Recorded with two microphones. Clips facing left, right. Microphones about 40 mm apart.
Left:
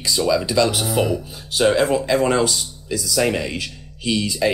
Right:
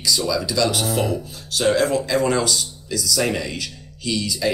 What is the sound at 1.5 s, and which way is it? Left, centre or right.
Speech, left.